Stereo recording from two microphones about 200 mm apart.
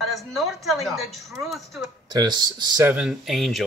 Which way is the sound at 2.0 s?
20° right (ahead or behind).